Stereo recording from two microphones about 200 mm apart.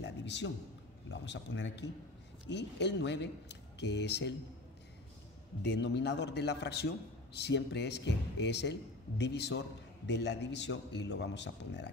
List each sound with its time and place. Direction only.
0.0 s a sound: 60° left (ahead or behind)
1.1 s a man's voice: 60° left (ahead or behind)
5.6 s a man's voice: 55° left (ahead or behind)